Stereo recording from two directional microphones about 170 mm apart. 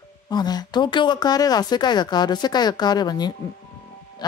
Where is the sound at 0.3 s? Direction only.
25° left (ahead or behind).